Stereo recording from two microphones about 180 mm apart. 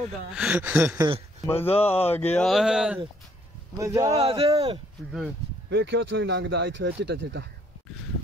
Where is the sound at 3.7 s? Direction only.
20° right (ahead or behind).